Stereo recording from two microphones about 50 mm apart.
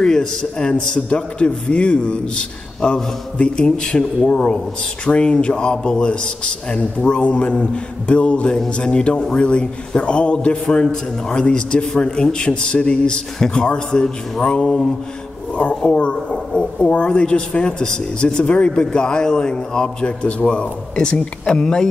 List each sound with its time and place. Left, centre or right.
0.0 s a man's voice: centre